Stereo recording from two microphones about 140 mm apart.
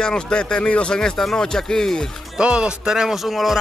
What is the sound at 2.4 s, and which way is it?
A man's voice, 5° right (ahead or behind).